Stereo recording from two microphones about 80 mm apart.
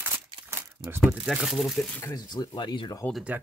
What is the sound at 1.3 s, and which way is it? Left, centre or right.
Speech, centre.